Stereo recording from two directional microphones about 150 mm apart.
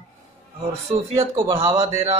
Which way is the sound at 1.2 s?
20° right (ahead or behind).